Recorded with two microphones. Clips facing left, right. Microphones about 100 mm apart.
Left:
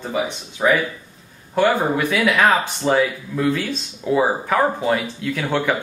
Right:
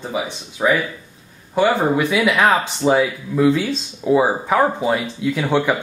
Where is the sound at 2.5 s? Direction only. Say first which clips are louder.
Right 2 dB; 5° right (ahead or behind).